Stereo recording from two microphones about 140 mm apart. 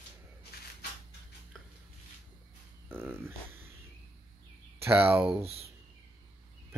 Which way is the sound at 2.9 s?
15° right (ahead or behind).